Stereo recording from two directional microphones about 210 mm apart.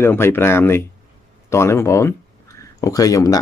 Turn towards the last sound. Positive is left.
turn(degrees=15)  # may be behind; listen again after turning